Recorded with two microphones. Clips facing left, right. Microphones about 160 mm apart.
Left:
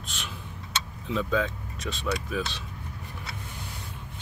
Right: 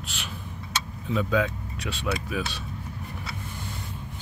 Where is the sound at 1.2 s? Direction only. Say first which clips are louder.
Right 2 dB; 5° right (ahead or behind).